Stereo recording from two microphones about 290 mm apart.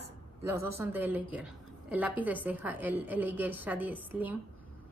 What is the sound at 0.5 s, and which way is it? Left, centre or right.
A woman's voice, centre.